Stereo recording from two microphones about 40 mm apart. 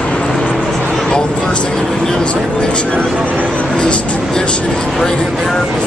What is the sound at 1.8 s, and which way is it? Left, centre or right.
Vehicle, centre.